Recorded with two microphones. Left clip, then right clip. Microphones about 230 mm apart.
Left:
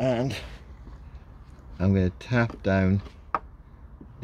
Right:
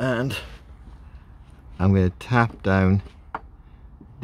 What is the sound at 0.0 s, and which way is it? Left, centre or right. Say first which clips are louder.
Speech: right 1 dB; right.